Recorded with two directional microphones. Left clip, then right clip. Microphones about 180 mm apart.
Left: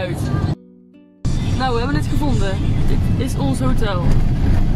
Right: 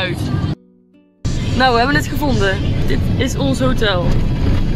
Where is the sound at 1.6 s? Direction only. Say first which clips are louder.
Right 8 dB; 15° right (ahead or behind).